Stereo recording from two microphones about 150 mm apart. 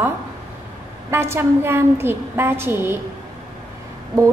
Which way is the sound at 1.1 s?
15° right (ahead or behind).